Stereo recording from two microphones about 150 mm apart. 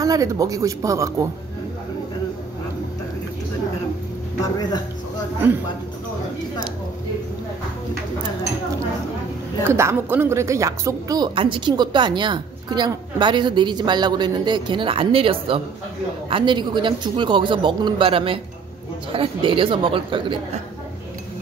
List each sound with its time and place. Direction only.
0.0 s speech: 25° right (ahead or behind)
4.4 s speech: 25° left (ahead or behind)
9.7 s speech: 15° right (ahead or behind); by 20.3 s 35° right (ahead or behind)